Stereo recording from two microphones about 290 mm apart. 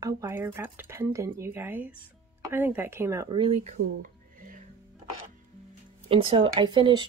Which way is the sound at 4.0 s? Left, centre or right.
Right.